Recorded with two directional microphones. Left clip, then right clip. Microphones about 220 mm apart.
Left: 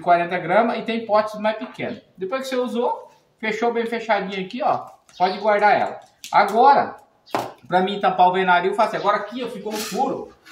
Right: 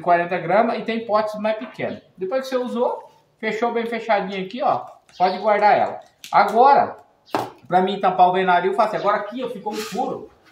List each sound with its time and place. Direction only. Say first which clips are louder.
0.0 s speech: even; 5° right (ahead or behind)